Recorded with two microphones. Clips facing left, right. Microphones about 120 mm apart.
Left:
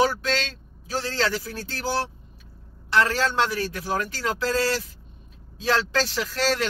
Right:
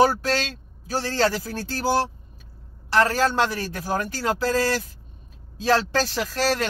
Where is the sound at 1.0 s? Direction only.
35° right (ahead or behind).